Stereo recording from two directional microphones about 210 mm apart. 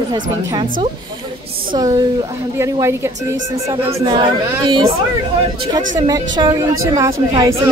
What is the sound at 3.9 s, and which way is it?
Speech, 30° right (ahead or behind).